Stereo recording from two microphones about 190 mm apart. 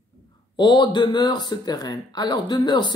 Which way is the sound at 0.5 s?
25° left (ahead or behind).